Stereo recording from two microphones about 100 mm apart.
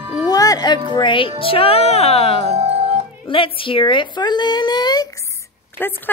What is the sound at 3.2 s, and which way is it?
A woman's voice, 60° left (ahead or behind).